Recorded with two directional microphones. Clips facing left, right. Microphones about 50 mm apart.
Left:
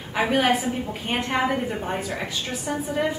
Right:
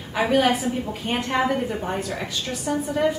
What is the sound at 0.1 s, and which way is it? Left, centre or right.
A woman's voice, centre.